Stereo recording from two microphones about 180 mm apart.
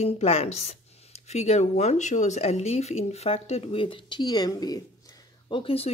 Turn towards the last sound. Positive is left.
turn(degrees=30)  # may be behind; listen again after turning